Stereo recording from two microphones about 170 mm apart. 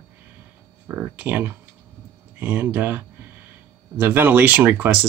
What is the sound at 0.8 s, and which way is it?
Speech, 10° right (ahead or behind).